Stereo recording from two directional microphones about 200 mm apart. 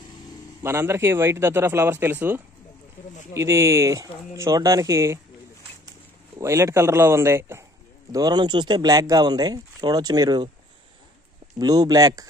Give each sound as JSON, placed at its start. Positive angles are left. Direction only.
{"t": 0.6, "sound": "speech", "side_deg": -10}
{"t": 6.3, "sound": "speech", "side_deg": -15}
{"t": 11.5, "sound": "speech", "side_deg": -20}